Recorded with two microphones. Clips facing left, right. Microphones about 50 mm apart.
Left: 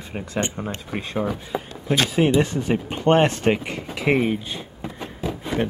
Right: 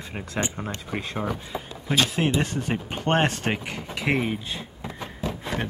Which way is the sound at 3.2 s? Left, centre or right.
Centre.